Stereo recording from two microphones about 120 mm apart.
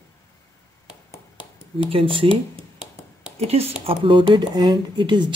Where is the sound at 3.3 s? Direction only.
60° right (ahead or behind).